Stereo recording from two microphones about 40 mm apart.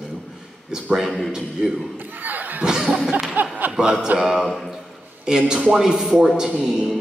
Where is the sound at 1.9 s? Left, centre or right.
Right.